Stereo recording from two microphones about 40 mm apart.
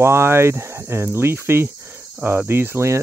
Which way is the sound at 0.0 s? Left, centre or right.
Right.